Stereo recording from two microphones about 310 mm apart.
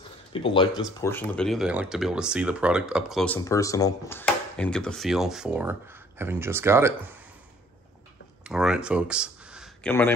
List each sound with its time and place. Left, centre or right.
0.3 s speech: centre
1.0 s speech: centre
8.5 s speech: centre